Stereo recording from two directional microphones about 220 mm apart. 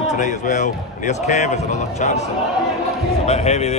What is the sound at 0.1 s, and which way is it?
Speech, 35° left (ahead or behind).